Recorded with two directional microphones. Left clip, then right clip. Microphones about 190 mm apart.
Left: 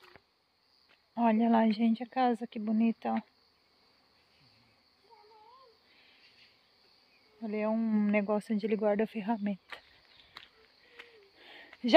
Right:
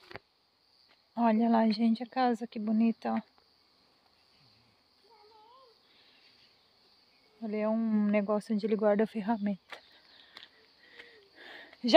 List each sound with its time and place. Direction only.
1.1 s speech: 5° right (ahead or behind)
7.4 s speech: centre (ahead or behind)
10.4 s a sound: 15° right (ahead or behind)